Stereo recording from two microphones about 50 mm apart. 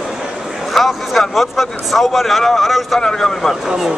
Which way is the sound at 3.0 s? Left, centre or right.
Centre.